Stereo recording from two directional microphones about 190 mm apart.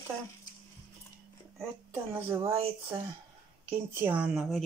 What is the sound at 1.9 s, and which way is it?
Speech, 10° right (ahead or behind).